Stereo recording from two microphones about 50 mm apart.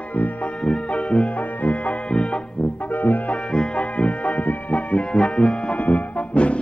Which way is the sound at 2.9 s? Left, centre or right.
Left.